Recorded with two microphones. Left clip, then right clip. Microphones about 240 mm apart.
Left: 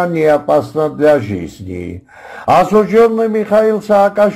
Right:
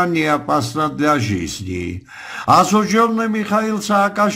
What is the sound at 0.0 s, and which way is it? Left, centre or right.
A man's voice, centre.